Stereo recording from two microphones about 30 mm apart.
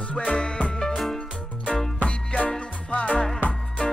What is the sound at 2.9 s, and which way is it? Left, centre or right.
Music, left.